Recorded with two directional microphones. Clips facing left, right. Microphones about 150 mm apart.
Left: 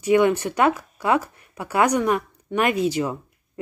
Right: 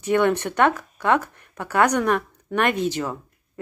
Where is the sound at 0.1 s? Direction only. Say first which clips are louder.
Left 2 dB; 10° left (ahead or behind).